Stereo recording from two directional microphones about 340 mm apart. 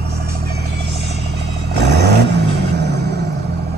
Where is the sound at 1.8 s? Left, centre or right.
Right.